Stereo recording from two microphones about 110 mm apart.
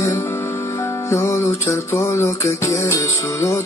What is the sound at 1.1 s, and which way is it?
Music, 25° left (ahead or behind).